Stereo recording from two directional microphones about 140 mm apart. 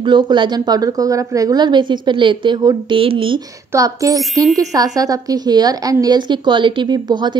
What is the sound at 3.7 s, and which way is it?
A woman's voice, 25° right (ahead or behind).